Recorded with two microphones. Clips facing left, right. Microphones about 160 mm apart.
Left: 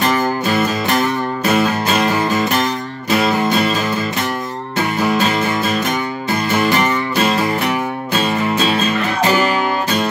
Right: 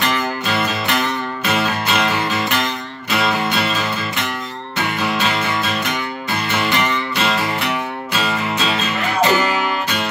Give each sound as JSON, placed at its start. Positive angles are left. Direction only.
{"t": 0.0, "sound": "music", "side_deg": 45}
{"t": 5.0, "sound": "music", "side_deg": 40}